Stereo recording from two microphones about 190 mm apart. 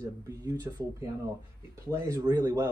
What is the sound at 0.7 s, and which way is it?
Speech, 20° right (ahead or behind).